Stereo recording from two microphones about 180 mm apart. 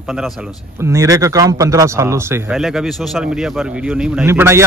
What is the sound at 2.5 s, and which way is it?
Speech, centre (ahead or behind).